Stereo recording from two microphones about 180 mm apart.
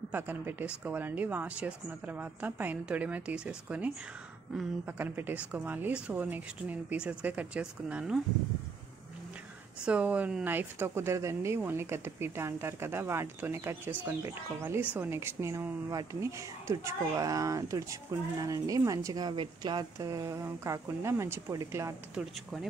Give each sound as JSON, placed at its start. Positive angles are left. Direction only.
{"t": 0.1, "sound": "speech", "side_deg": -10}
{"t": 9.8, "sound": "a woman's voice", "side_deg": -5}
{"t": 22.1, "sound": "speech", "side_deg": 0}